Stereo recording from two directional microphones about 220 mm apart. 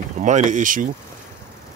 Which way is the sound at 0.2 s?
35° right (ahead or behind).